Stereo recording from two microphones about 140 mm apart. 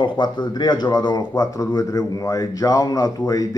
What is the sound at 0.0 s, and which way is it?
Speech, 35° left (ahead or behind).